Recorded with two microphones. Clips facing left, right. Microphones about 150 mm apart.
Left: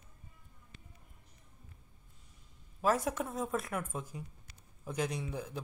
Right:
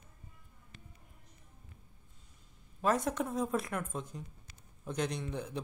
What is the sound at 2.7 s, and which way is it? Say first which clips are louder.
A man's voice: even; 5° left (ahead or behind).